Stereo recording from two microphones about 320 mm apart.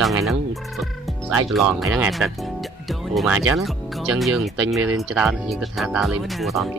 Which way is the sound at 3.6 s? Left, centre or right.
Centre.